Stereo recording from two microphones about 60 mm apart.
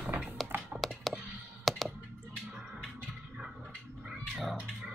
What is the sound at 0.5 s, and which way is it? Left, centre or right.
Tap, right.